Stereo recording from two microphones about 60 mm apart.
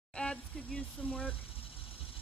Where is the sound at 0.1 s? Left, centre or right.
Centre.